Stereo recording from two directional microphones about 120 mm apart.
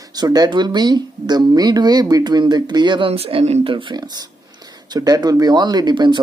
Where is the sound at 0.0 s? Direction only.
35° right (ahead or behind).